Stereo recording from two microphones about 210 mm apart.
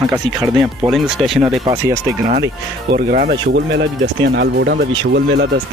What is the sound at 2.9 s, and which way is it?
Speech, 45° right (ahead or behind).